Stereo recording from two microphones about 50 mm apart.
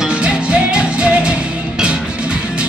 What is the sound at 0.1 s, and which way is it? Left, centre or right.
Music, right.